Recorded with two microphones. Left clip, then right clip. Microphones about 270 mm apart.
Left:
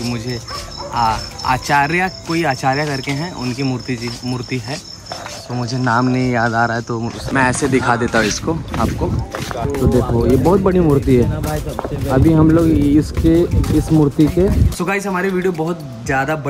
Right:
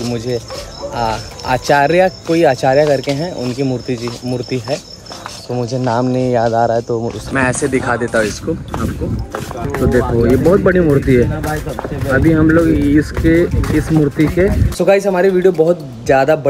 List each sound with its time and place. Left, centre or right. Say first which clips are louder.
0.9 s speech: left 2 dB; centre
6.1 s speech: right 3 dB; centre
7.3 s speech: even; centre
9.7 s speech: right 3 dB; centre